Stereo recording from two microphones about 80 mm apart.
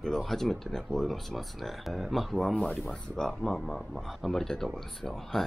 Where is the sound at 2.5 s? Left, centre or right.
Centre.